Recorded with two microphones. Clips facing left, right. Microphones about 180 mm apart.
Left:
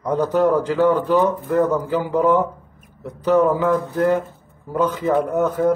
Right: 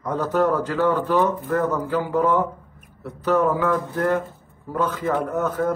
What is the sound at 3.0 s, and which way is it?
Speech, 15° left (ahead or behind).